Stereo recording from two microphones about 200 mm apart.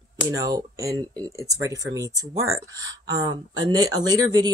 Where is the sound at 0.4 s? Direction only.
20° right (ahead or behind).